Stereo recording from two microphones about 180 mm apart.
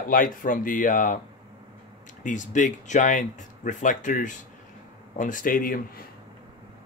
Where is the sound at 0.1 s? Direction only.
50° left (ahead or behind).